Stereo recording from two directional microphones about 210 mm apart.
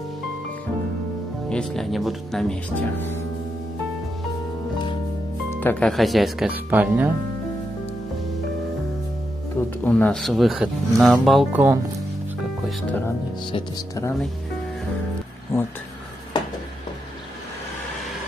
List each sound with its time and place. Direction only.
1.5 s speech: 5° left (ahead or behind)
5.6 s speech: 5° left (ahead or behind); by 7.1 s 10° right (ahead or behind)
9.8 s speech: 5° left (ahead or behind); by 11.8 s 10° right (ahead or behind)
12.6 s speech: 10° left (ahead or behind)
13.5 s speech: 20° left (ahead or behind)
15.5 s speech: 15° left (ahead or behind)